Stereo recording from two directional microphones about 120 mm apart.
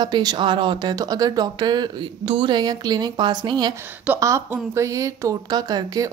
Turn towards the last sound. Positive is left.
turn(degrees=-30)  # may be behind; listen again after turning